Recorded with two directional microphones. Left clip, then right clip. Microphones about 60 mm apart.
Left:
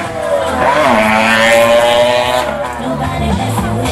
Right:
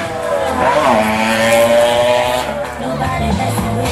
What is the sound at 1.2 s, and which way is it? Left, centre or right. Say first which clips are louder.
Vehicle: left 4 dB; left.